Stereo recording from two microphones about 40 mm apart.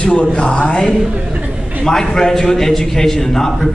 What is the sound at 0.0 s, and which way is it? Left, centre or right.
Mantra, left.